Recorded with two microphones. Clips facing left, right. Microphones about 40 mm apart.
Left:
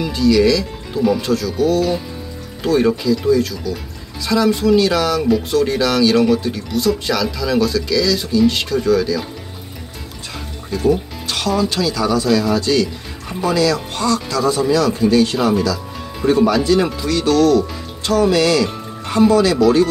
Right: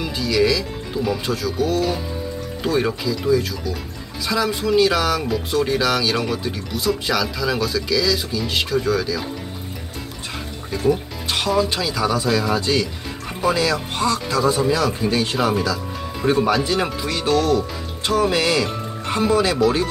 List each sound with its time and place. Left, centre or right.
0.0 s speech: centre
10.7 s speech: centre
17.1 s speech: right